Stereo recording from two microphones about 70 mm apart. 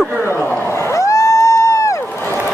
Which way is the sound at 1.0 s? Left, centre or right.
Left.